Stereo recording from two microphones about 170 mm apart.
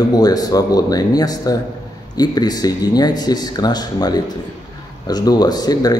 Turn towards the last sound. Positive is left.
turn(degrees=25)  # may be behind; listen again after turning